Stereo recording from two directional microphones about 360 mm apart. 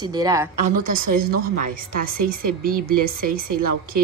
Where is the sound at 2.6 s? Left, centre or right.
Right.